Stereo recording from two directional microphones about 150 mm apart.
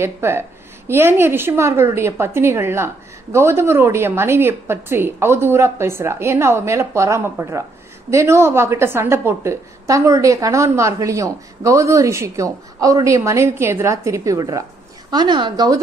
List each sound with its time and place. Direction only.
0.0 s a woman's voice: 15° right (ahead or behind)